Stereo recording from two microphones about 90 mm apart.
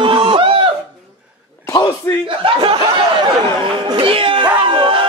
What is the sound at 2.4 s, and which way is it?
Speech, 70° right (ahead or behind).